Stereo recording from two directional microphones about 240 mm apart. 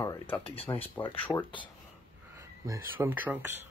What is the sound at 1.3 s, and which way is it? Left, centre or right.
Speech, centre.